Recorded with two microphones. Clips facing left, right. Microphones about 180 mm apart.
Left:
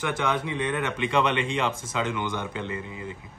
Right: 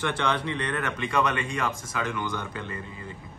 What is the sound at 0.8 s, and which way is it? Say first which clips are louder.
Speech: left 1 dB; 25° left (ahead or behind).